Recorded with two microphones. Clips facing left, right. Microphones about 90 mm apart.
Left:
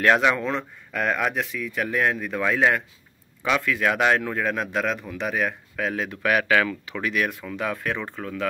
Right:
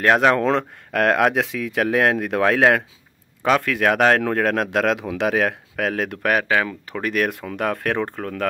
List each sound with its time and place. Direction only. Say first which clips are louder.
0.0 s speech: right 3 dB; 40° right (ahead or behind)
0.4 s speech: right 8 dB; 75° right (ahead or behind)
3.4 s speech: right 4 dB; 45° right (ahead or behind)
4.2 s speech: right 6 dB; 65° right (ahead or behind)
6.3 s speech: left 1 dB; 30° right (ahead or behind)
6.9 s speech: right 3 dB; 50° right (ahead or behind)